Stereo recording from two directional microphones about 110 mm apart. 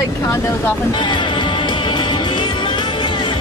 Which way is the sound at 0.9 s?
45° left (ahead or behind).